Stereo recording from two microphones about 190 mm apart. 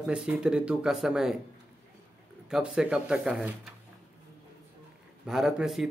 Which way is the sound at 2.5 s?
5° right (ahead or behind).